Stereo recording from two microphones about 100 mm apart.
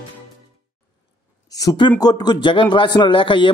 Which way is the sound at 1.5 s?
40° left (ahead or behind).